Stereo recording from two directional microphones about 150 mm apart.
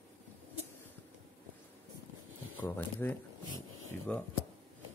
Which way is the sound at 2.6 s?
15° left (ahead or behind).